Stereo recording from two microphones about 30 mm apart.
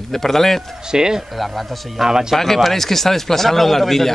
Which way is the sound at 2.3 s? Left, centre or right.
Centre.